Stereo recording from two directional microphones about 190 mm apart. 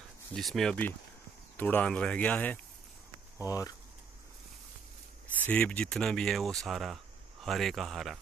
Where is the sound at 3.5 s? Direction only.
20° left (ahead or behind).